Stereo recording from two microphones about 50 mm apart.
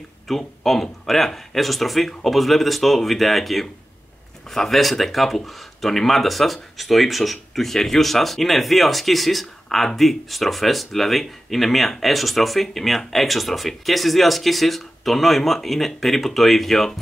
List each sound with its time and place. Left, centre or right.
0.3 s speech: centre